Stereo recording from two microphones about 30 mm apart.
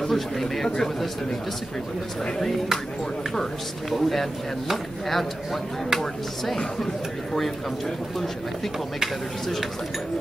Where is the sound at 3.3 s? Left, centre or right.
Centre.